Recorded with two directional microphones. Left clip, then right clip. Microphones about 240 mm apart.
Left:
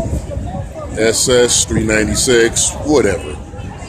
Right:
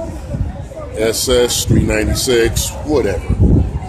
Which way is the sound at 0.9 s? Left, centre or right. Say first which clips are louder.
Left 2 dB; centre.